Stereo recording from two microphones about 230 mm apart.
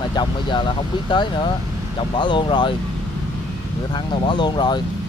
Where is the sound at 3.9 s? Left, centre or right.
Centre.